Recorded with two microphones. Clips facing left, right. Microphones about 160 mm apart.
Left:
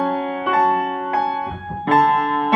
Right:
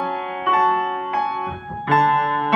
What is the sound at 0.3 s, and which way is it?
Music, 30° left (ahead or behind).